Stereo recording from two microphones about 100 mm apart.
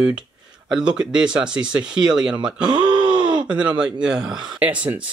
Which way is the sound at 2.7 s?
50° right (ahead or behind).